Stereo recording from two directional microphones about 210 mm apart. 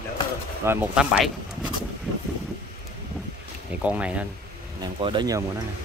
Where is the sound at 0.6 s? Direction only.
10° right (ahead or behind).